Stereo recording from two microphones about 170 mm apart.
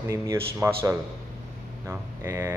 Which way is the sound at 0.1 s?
15° right (ahead or behind).